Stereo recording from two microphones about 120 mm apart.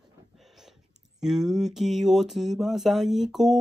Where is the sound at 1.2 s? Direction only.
5° right (ahead or behind).